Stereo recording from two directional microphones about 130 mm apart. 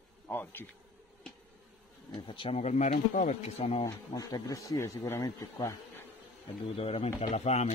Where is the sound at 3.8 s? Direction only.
25° left (ahead or behind).